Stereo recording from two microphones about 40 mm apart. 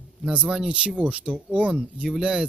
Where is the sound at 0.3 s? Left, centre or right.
Right.